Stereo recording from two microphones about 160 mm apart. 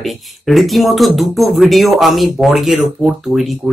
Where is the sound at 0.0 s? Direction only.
Centre (ahead or behind).